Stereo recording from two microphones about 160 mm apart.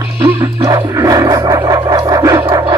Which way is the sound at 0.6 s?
20° right (ahead or behind).